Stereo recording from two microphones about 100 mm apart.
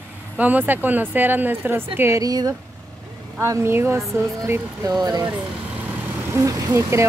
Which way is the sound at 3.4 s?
25° right (ahead or behind).